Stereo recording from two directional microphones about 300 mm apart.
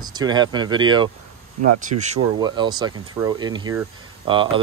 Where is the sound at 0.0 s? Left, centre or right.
Centre.